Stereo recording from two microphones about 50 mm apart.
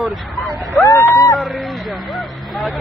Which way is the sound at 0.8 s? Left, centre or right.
Left.